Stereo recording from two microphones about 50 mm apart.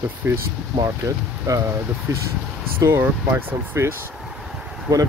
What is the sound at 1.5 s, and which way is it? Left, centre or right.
Speech, right.